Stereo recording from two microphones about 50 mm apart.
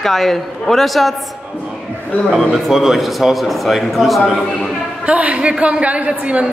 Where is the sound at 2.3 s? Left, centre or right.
Centre.